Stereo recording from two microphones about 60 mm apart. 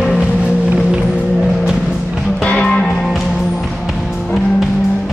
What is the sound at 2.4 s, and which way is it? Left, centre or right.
Music, centre.